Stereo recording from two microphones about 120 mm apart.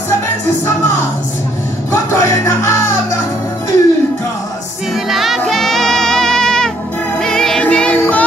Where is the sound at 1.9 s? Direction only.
25° left (ahead or behind).